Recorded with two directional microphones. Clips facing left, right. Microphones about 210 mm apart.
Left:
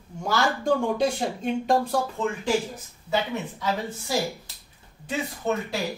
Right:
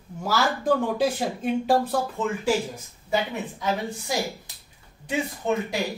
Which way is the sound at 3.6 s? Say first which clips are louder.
Right 4 dB; 15° right (ahead or behind).